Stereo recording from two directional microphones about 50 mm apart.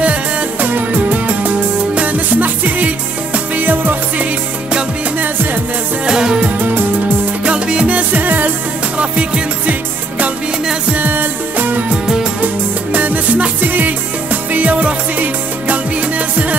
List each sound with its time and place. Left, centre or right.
0.0 s music: right
6.0 s music: centre; by 8.5 s right
8.9 s music: right
12.9 s music: right